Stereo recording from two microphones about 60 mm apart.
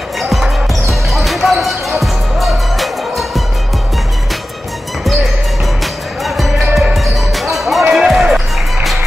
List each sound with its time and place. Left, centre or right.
0.2 s basketball bounce: centre
5.0 s music: centre
6.2 s basketball bounce: centre
7.9 s music: centre